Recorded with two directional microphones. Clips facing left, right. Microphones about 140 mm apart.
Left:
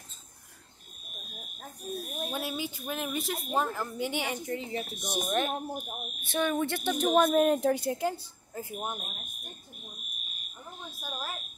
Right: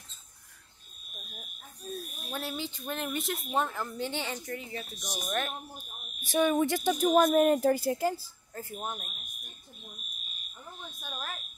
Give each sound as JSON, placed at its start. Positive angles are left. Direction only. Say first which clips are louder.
{"t": 1.1, "sound": "fire alarm", "louder": "left 1 dB", "side_deg": 0}
{"t": 1.8, "sound": "buzzer", "louder": "left 2 dB", "side_deg": 15}
{"t": 2.0, "sound": "a sound", "louder": "left 9 dB", "side_deg": 55}
{"t": 2.3, "sound": "speech", "louder": "right 1 dB", "side_deg": 10}
{"t": 3.9, "sound": "a woman's voice", "louder": "left 2 dB", "side_deg": 15}
{"t": 4.5, "sound": "speech", "louder": "left 4 dB", "side_deg": 25}
{"t": 4.8, "sound": "speech", "louder": "left 5 dB", "side_deg": 55}
{"t": 6.3, "sound": "speech", "louder": "right 3 dB", "side_deg": -10}
{"t": 7.1, "sound": "speech", "louder": "even", "side_deg": 0}
{"t": 8.5, "sound": "a woman's voice", "louder": "left 2 dB", "side_deg": 15}
{"t": 9.0, "sound": "speech", "louder": "left 5 dB", "side_deg": 50}
{"t": 11.0, "sound": "smoke detector", "louder": "left 3 dB", "side_deg": 5}